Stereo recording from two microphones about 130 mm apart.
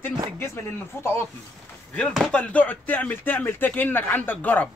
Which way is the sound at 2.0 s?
5° left (ahead or behind).